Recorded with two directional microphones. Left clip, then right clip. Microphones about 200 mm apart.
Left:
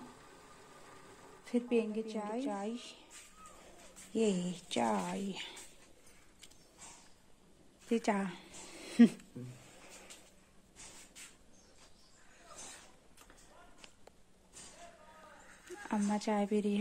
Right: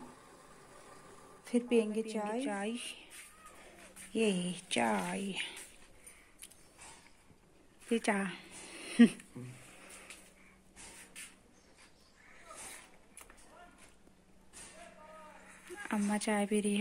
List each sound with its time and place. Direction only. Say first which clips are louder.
1.4 s a woman's voice: right 2 dB; 15° right (ahead or behind)
2.2 s speech: right 2 dB; centre (ahead or behind)
4.1 s speech: right 1 dB; 5° left (ahead or behind)
7.9 s a sound: right 1 dB; centre (ahead or behind)
15.8 s speech: even; centre (ahead or behind)